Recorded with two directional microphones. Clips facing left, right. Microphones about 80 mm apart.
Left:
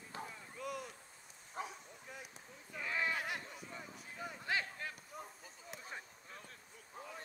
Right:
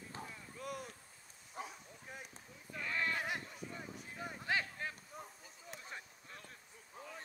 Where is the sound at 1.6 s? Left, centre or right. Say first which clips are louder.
Left 2 dB; left.